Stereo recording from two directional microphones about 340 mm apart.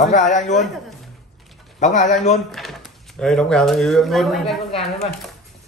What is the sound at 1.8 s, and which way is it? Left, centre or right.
Speech, left.